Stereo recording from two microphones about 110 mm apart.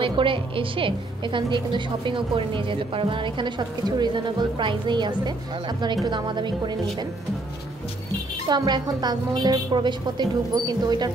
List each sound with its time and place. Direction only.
0.0 s a woman's voice: 50° right (ahead or behind)
8.5 s a woman's voice: 40° right (ahead or behind)